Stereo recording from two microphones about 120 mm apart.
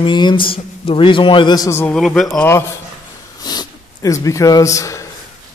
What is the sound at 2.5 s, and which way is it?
Speech, 20° left (ahead or behind).